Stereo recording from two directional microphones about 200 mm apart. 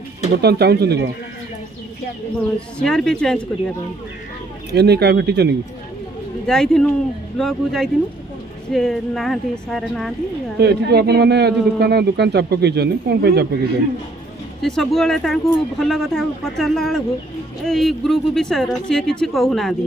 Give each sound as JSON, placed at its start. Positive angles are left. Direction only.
{"t": 0.3, "sound": "a man's voice", "side_deg": -55}
{"t": 2.8, "sound": "speech", "side_deg": 0}
{"t": 4.7, "sound": "a man's voice", "side_deg": -55}
{"t": 6.4, "sound": "speech", "side_deg": 5}
{"t": 10.6, "sound": "a man's voice", "side_deg": -55}
{"t": 14.6, "sound": "speech", "side_deg": 0}